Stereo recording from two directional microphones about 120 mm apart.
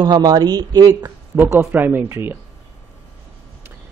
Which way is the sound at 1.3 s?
20° right (ahead or behind).